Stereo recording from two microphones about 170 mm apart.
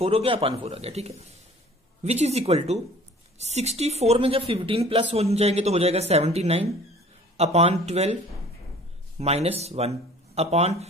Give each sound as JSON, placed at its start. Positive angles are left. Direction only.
{"t": 0.0, "sound": "a woman's voice", "side_deg": -35}
{"t": 9.2, "sound": "a woman's voice", "side_deg": -40}